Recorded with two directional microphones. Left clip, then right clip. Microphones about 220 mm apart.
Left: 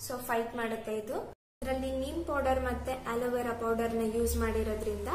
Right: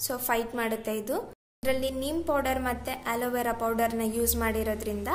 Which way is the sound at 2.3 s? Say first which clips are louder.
Right 2 dB; 50° right (ahead or behind).